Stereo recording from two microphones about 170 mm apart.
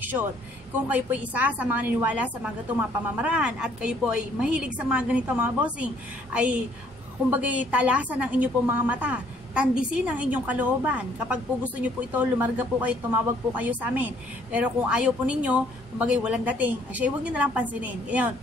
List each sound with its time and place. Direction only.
0.0 s a woman's voice: 10° right (ahead or behind)